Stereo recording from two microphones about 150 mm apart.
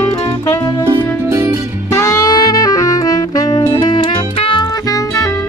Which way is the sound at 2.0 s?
25° left (ahead or behind).